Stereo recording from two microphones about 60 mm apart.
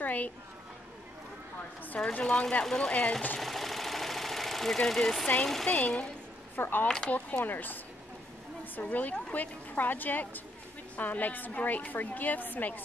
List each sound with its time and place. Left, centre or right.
0.0 s a sound: left
2.0 s a woman's voice: centre
2.6 s speech: centre
2.9 s a woman's voice: left
3.3 s engine: centre
5.4 s speech: centre
5.7 s a woman's voice: left
6.5 s a woman's voice: left
8.8 s a woman's voice: left